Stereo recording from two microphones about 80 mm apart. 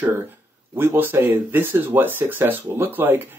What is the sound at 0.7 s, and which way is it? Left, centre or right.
Speech, right.